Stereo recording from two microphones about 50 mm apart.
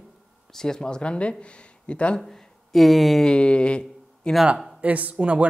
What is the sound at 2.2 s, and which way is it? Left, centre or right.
Speech, centre.